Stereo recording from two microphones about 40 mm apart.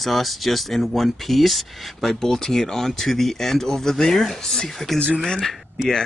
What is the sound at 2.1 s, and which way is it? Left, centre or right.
Speech, centre.